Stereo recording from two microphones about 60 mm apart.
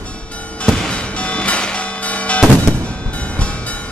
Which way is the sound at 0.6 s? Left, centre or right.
Centre.